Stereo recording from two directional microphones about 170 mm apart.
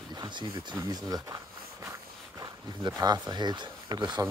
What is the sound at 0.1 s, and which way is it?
Speech, 25° right (ahead or behind).